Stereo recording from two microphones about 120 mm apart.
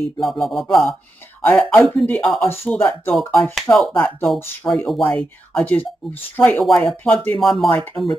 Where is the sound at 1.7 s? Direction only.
10° left (ahead or behind).